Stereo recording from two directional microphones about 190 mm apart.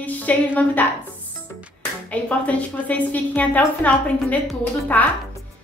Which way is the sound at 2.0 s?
5° left (ahead or behind).